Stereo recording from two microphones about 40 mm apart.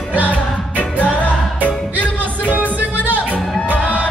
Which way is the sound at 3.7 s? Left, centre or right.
Left.